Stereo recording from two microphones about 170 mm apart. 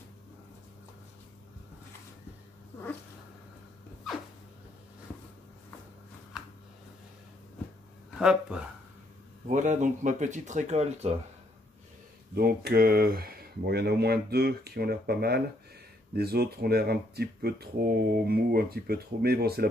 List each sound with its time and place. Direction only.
8.2 s speech: 5° right (ahead or behind)
9.5 s speech: 45° right (ahead or behind)
12.4 s speech: 65° right (ahead or behind)